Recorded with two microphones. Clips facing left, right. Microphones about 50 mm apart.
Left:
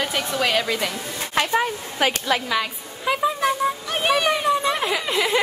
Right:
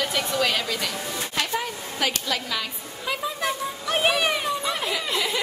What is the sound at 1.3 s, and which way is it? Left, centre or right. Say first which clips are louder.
A woman's voice: left 8 dB; left.